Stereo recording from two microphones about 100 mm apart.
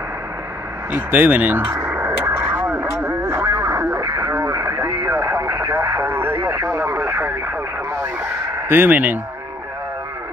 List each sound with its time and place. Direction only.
0.9 s radio: 15° right (ahead or behind)
4.0 s radio: 40° right (ahead or behind)
5.3 s radio: 20° right (ahead or behind)
8.2 s chicken: 20° right (ahead or behind)